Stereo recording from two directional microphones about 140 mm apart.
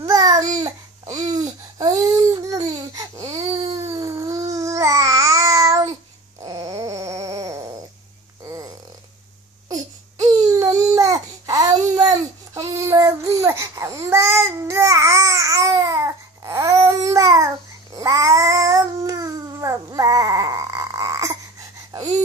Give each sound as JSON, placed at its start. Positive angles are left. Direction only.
{"t": 0.0, "sound": "babbling", "side_deg": -25}
{"t": 6.4, "sound": "dog", "side_deg": -25}
{"t": 9.7, "sound": "baby cry", "side_deg": -25}
{"t": 17.9, "sound": "cat", "side_deg": -25}